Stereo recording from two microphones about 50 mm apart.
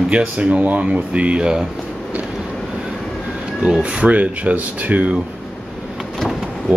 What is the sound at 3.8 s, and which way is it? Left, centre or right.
Speech, right.